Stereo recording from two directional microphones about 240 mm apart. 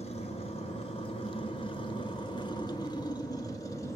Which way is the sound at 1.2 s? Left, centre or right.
Left.